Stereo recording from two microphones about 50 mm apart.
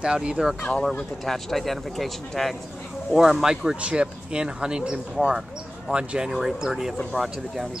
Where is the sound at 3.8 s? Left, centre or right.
Centre.